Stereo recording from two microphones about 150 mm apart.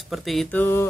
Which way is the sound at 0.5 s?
15° left (ahead or behind).